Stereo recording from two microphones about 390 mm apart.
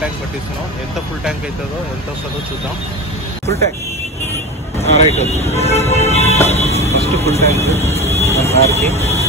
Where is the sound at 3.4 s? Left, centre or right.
Centre.